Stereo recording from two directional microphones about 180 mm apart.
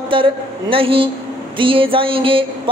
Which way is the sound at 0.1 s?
30° right (ahead or behind).